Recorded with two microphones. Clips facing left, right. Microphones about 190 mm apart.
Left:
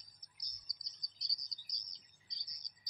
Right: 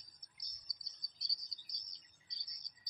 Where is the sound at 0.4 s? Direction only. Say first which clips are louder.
Left 2 dB; 55° right (ahead or behind).